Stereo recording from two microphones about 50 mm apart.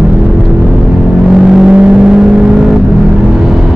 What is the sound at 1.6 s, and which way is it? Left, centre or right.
Vehicle, centre.